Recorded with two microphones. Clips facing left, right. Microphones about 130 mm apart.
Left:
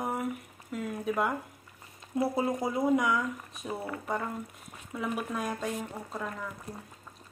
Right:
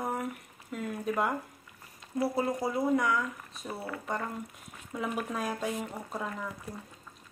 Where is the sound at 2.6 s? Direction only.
20° left (ahead or behind).